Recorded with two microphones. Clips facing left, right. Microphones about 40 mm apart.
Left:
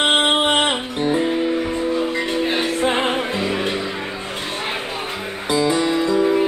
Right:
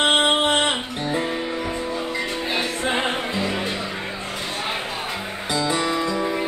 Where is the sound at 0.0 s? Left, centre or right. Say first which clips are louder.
Left 1 dB; centre.